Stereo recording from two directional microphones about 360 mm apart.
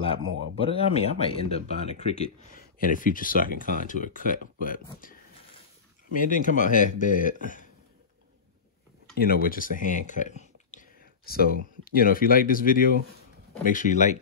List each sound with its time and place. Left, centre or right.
0.1 s speech: centre
6.1 s speech: left
9.2 s speech: left